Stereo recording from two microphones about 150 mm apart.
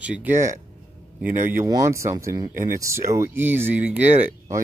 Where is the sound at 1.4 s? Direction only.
15° right (ahead or behind).